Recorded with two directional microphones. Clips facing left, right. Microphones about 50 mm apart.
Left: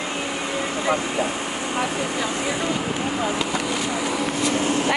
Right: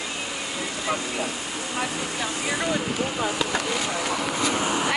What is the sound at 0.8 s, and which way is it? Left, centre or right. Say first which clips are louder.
Speech: left 4 dB; left.